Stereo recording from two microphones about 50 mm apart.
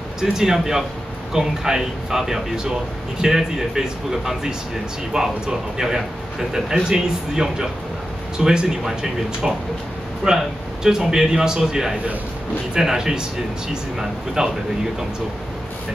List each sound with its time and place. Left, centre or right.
0.2 s speech: centre
10.2 s speech: centre